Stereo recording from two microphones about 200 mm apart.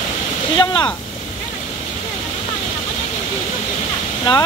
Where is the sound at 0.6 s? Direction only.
25° left (ahead or behind).